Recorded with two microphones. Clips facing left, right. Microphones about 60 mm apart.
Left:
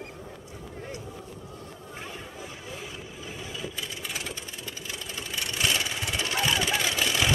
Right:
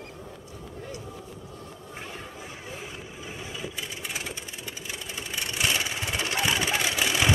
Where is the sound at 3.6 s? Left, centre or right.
Centre.